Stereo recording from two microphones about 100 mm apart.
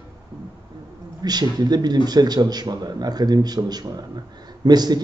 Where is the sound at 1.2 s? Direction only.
45° right (ahead or behind).